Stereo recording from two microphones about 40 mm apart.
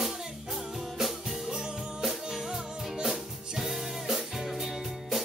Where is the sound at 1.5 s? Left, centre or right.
Centre.